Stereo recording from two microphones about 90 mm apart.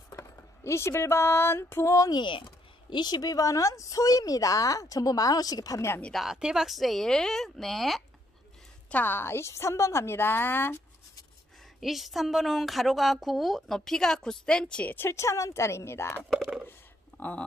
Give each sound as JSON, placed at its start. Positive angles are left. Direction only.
{"t": 0.2, "sound": "a sound", "side_deg": 30}
{"t": 2.1, "sound": "speech", "side_deg": 60}
{"t": 6.1, "sound": "a woman's voice", "side_deg": -5}
{"t": 8.9, "sound": "a woman's voice", "side_deg": 20}
{"t": 11.8, "sound": "a woman's voice", "side_deg": 0}
{"t": 15.0, "sound": "speech", "side_deg": 35}
{"t": 16.3, "sound": "speech", "side_deg": -10}
{"t": 17.2, "sound": "speech", "side_deg": 15}